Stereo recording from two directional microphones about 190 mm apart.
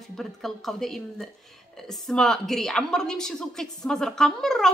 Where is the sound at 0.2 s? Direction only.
Centre (ahead or behind).